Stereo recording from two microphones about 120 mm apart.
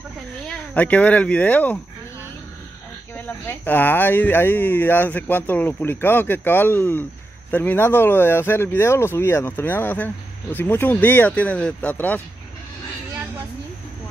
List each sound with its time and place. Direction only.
0.5 s speech: 10° left (ahead or behind)
3.2 s speech: 15° left (ahead or behind)